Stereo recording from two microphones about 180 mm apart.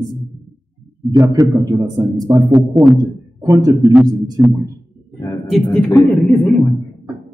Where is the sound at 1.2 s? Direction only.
20° right (ahead or behind).